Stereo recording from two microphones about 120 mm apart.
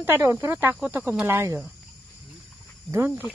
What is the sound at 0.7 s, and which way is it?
Speech, 15° right (ahead or behind).